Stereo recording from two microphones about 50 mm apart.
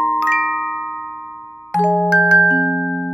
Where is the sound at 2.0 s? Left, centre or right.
Centre.